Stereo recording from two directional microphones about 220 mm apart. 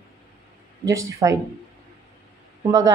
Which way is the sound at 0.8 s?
15° right (ahead or behind).